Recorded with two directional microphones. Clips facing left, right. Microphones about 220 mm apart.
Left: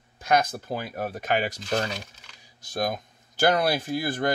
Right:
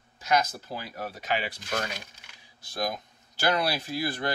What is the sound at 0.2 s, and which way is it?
Speech, 55° left (ahead or behind).